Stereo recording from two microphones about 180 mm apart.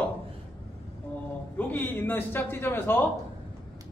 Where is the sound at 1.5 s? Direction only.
10° left (ahead or behind).